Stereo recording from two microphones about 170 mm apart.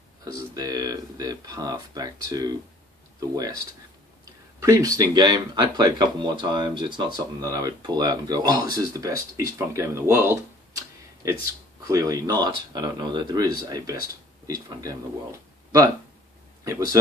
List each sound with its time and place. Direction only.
0.2 s speech: 20° right (ahead or behind)
4.6 s speech: 20° right (ahead or behind)
16.6 s speech: 20° right (ahead or behind)